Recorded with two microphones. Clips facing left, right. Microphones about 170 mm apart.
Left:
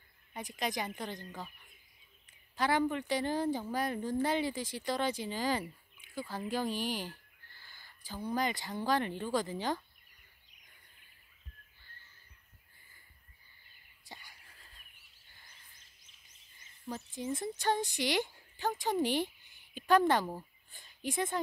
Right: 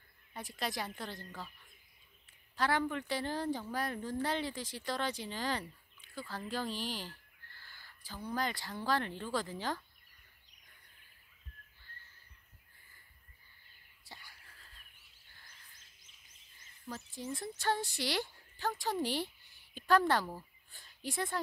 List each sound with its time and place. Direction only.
0.3 s speech: 20° left (ahead or behind)
2.2 s a sound: centre (ahead or behind)
2.8 s speech: 5° left (ahead or behind)
3.3 s speech: 20° left (ahead or behind)
3.7 s speech: centre (ahead or behind)
6.1 s speech: 20° left (ahead or behind)
6.7 s speech: 50° left (ahead or behind)
7.8 s speech: 20° left (ahead or behind)
14.0 s a sound: 20° left (ahead or behind)
16.8 s speech: 20° left (ahead or behind)